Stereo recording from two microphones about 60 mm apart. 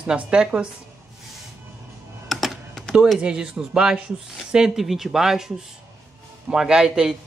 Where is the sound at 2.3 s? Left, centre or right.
Centre.